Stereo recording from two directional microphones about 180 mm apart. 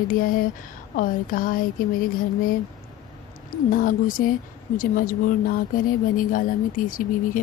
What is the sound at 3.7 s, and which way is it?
A woman's voice, 50° left (ahead or behind).